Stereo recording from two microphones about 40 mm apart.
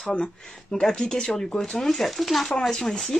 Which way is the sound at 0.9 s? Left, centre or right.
Centre.